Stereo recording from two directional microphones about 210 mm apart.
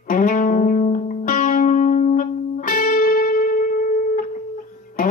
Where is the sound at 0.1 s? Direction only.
40° left (ahead or behind).